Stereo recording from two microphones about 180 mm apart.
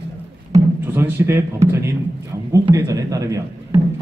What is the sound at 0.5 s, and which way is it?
A man's voice, 15° right (ahead or behind).